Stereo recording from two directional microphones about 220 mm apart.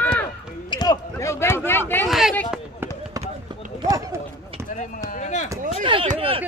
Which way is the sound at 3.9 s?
15° right (ahead or behind).